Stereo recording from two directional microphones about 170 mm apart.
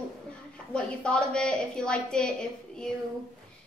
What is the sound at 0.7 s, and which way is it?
A woman's voice, 5° left (ahead or behind).